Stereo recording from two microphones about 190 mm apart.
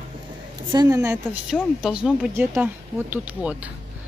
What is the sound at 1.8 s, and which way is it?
Speech, 5° right (ahead or behind).